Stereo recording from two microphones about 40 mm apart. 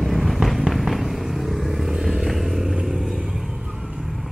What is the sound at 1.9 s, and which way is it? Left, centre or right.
Vehicle, centre.